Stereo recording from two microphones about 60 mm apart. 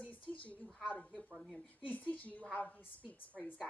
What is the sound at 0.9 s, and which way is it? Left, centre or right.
Speech, centre.